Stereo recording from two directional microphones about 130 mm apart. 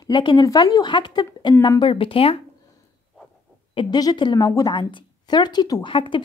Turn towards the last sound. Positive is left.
turn(degrees=40)  # may be behind; listen again after turning